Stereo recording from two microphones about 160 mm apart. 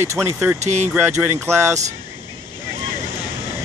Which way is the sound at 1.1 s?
15° right (ahead or behind).